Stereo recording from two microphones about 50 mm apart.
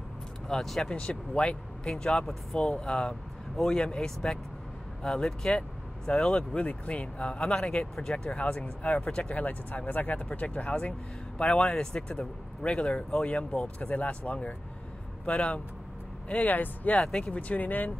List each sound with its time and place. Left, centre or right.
0.5 s speech: centre
0.8 s speech: centre
8.4 s speech: left
9.4 s speech: left
16.4 s speech: left
17.0 s speech: left